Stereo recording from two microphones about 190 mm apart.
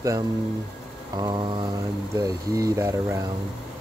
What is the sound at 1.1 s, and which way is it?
Mantra, 20° right (ahead or behind).